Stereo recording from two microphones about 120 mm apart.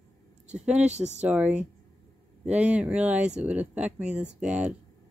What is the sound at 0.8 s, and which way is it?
Speech, 70° right (ahead or behind).